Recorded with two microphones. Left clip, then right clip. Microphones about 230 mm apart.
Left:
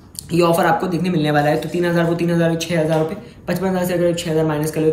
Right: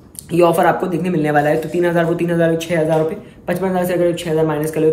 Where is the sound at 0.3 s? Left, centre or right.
Centre.